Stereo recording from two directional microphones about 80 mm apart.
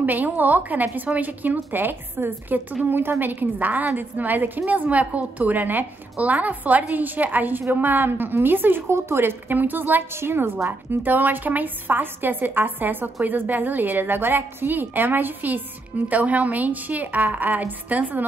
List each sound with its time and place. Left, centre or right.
0.0 s a woman's voice: right